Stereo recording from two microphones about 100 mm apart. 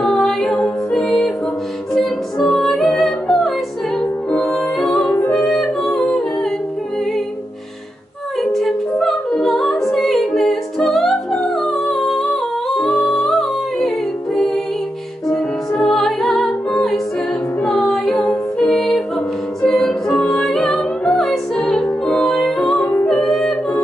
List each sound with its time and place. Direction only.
0.0 s music: centre (ahead or behind)
8.4 s music: centre (ahead or behind)
17.6 s music: 5° left (ahead or behind)
22.8 s music: 20° left (ahead or behind)
23.0 s yodeling: 5° left (ahead or behind)